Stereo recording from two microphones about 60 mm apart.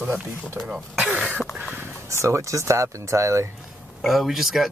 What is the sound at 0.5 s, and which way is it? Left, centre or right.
Speech, centre.